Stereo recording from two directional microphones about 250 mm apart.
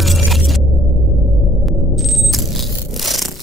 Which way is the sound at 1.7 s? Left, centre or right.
Centre.